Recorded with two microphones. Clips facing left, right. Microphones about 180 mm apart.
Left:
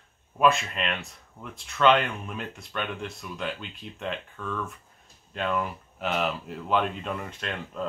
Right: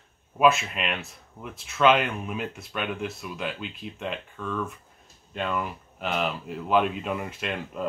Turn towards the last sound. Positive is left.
turn(degrees=-5)  # may be behind; listen again after turning